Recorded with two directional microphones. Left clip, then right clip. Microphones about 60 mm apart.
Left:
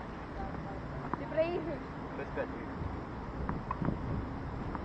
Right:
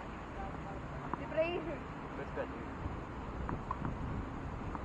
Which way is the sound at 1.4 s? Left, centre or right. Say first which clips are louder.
Left 2 dB; left.